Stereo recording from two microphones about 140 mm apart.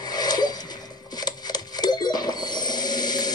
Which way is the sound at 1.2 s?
30° left (ahead or behind).